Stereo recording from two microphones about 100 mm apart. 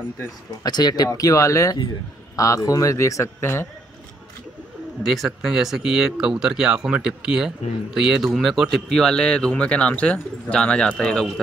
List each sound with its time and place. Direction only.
0.7 s speech: 45° left (ahead or behind); by 3.6 s 25° left (ahead or behind)
5.0 s speech: centre (ahead or behind)